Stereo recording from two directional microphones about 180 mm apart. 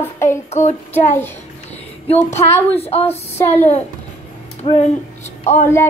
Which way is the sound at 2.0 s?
35° left (ahead or behind).